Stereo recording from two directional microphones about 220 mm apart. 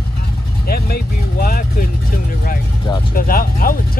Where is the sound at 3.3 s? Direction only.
40° left (ahead or behind).